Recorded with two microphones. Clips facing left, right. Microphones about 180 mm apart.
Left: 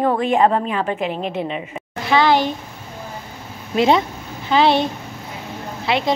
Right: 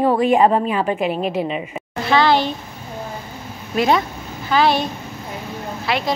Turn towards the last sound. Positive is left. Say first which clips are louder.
# left 2 dB
turn(degrees=20)  # may be behind; listen again after turning